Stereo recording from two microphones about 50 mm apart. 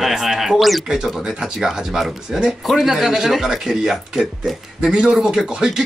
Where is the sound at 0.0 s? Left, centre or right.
Centre.